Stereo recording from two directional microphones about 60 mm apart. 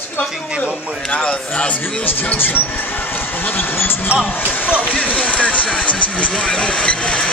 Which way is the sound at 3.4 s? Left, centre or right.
Left.